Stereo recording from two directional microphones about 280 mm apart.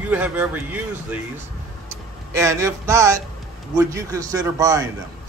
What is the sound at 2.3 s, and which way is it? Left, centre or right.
A man's voice, centre.